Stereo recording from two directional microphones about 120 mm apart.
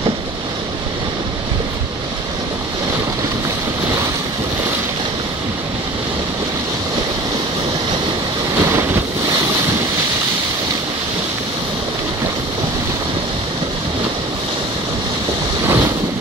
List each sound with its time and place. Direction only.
8.5 s waves: 20° right (ahead or behind)
15.6 s waves: 20° right (ahead or behind)